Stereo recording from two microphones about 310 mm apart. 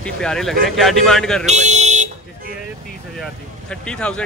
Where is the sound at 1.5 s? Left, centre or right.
Right.